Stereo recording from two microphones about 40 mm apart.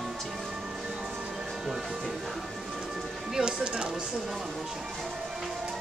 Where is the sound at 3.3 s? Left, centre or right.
Right.